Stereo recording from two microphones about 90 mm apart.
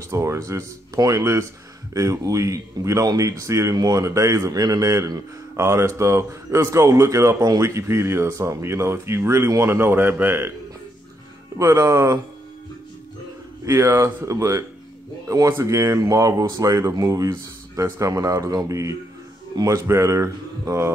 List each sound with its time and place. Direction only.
0.1 s speech: 35° right (ahead or behind)
11.5 s speech: 35° right (ahead or behind)
13.7 s speech: 30° right (ahead or behind)